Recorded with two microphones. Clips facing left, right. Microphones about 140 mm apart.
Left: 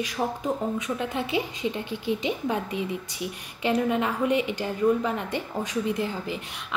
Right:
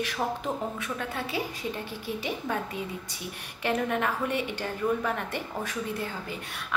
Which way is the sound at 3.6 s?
15° left (ahead or behind).